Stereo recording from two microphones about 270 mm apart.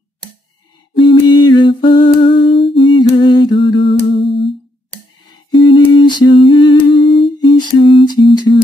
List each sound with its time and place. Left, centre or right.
0.9 s humming: centre
2.9 s a sound: centre
5.5 s humming: centre